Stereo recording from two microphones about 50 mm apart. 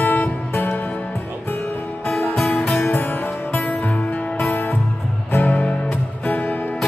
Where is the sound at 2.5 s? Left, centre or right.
Left.